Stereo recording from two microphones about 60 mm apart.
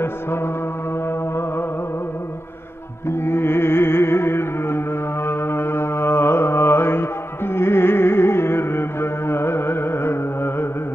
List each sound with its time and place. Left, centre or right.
3.1 s music: left